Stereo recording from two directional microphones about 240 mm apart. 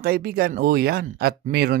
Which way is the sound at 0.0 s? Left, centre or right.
Right.